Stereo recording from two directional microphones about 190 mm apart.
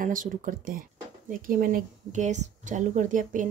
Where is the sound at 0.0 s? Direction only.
45° right (ahead or behind).